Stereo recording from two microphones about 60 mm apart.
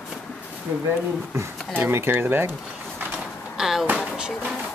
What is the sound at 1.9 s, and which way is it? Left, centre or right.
Speech, right.